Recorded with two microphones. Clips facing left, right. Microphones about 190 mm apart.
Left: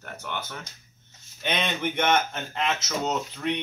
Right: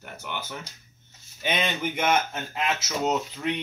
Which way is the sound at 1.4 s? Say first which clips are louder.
Even; 5° right (ahead or behind).